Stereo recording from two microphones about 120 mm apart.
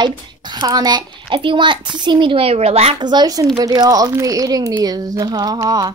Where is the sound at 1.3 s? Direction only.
45° right (ahead or behind).